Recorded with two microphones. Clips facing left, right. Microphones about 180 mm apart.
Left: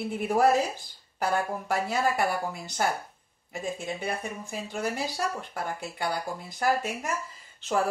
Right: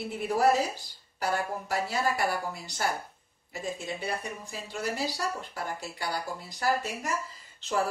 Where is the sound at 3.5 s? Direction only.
50° left (ahead or behind).